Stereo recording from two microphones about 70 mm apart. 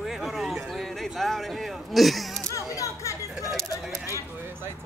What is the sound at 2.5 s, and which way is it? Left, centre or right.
Music, left.